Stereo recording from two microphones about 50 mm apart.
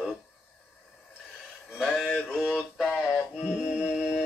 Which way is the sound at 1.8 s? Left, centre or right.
Centre.